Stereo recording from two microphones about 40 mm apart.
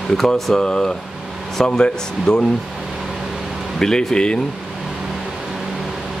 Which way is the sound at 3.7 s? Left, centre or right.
Centre.